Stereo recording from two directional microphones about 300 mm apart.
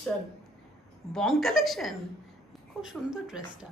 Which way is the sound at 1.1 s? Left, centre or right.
Centre.